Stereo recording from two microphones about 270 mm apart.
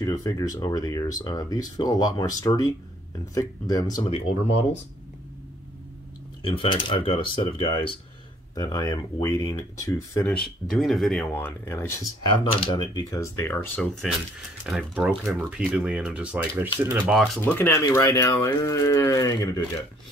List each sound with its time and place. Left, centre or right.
0.0 s speech: centre
6.4 s speech: centre
14.7 s speech: centre